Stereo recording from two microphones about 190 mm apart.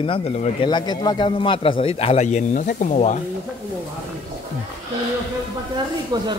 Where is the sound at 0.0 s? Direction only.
30° left (ahead or behind).